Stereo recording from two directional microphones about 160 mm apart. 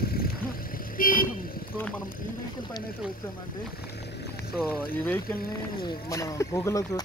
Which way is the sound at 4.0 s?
90° left.